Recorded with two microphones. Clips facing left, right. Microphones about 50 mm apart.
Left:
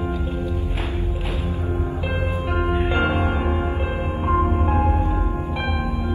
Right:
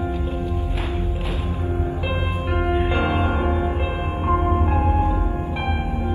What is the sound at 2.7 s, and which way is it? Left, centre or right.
Music, left.